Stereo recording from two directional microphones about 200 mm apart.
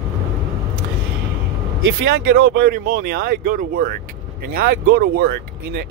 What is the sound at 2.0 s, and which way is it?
Speech, 50° right (ahead or behind).